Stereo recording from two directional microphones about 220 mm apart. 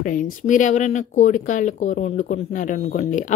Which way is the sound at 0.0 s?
35° left (ahead or behind).